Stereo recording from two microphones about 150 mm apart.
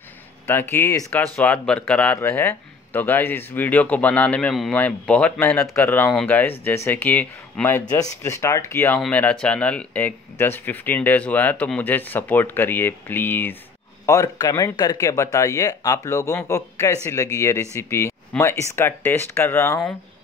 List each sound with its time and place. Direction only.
0.5 s speech: 15° left (ahead or behind)